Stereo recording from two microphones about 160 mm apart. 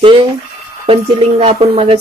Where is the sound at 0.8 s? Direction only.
35° right (ahead or behind).